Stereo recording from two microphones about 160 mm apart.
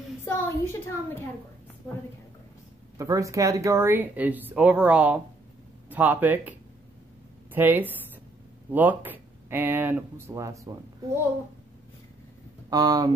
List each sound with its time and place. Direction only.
0.2 s a sound: 15° left (ahead or behind)
3.0 s speech: 20° right (ahead or behind)
7.5 s speech: 10° right (ahead or behind)
12.6 s speech: 25° right (ahead or behind)